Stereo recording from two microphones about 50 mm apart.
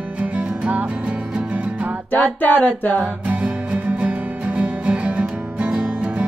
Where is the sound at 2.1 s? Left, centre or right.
Left.